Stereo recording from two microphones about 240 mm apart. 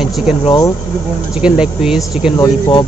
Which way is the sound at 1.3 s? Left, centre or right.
Centre.